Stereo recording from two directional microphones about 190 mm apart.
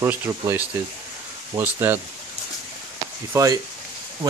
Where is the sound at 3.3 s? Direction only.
15° right (ahead or behind).